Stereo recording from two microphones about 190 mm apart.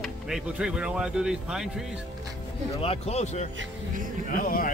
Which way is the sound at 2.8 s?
30° left (ahead or behind).